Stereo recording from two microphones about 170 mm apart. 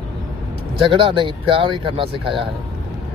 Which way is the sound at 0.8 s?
30° right (ahead or behind).